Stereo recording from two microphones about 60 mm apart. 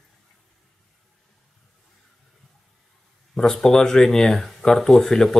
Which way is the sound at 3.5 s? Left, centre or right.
Centre.